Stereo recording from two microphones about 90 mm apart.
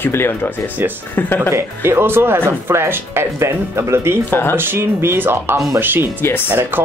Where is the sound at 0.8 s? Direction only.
25° right (ahead or behind).